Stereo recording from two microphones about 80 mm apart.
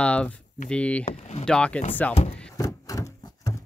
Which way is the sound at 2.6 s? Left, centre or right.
Left.